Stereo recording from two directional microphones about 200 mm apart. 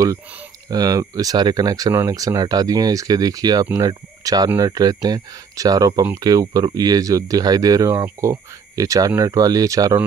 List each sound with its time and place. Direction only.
0.7 s speech: 20° right (ahead or behind)